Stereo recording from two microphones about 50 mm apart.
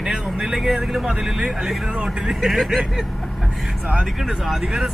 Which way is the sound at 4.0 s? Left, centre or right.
Centre.